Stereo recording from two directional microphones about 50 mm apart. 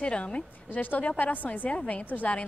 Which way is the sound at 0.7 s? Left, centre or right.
Left.